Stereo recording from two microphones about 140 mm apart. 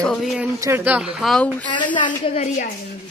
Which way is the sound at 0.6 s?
20° right (ahead or behind).